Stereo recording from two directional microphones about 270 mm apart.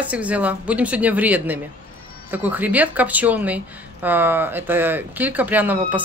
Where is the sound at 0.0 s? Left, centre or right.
Centre.